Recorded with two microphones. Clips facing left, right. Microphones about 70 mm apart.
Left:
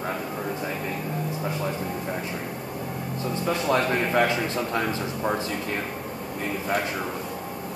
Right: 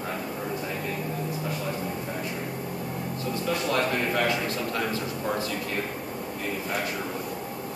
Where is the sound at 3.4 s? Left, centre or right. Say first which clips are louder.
Left 3 dB; left.